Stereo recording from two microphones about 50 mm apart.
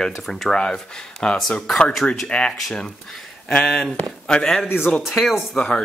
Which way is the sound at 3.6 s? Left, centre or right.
Centre.